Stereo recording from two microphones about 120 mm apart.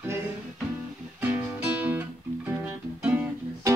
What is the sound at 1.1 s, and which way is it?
Music, 15° right (ahead or behind).